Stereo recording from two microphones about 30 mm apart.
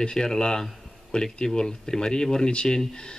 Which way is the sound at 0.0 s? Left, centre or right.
Left.